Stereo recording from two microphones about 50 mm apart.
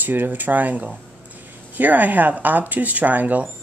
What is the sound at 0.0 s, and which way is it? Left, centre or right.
A woman's voice, right.